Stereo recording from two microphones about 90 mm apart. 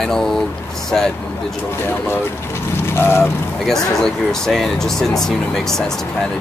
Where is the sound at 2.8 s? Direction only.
25° left (ahead or behind).